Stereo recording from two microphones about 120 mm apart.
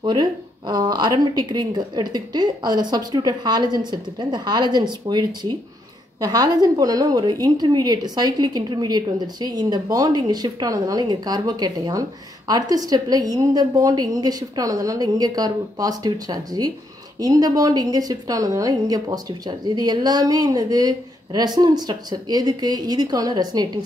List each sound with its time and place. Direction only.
0.0 s a woman's voice: 35° right (ahead or behind)